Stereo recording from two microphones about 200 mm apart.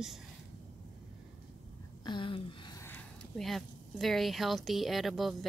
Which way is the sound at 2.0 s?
25° left (ahead or behind).